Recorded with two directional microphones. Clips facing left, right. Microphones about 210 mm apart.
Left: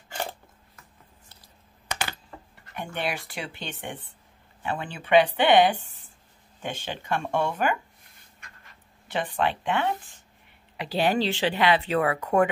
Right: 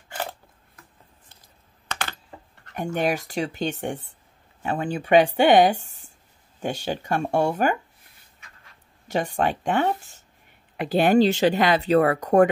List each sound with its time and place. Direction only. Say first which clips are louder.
0.1 s shuffling cards: right 1 dB; 5° right (ahead or behind)
1.9 s computer keyboard: even; 10° left (ahead or behind)
2.7 s speech: right 7 dB; 45° right (ahead or behind)
8.4 s duck: left 1 dB; centre (ahead or behind)
9.0 s speech: right 3 dB; 45° right (ahead or behind)